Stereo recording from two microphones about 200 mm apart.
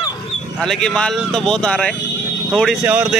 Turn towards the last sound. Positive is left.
turn(degrees=-10)  # may be behind; listen again after turning